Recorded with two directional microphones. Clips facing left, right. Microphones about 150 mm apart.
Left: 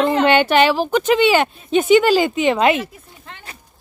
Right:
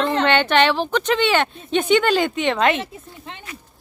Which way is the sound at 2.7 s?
20° right (ahead or behind).